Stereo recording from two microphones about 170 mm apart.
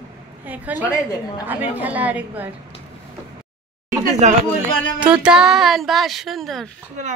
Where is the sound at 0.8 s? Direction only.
20° left (ahead or behind).